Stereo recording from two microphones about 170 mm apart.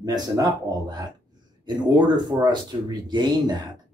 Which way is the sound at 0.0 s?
25° right (ahead or behind).